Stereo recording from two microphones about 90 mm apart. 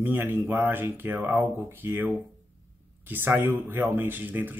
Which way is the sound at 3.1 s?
20° right (ahead or behind).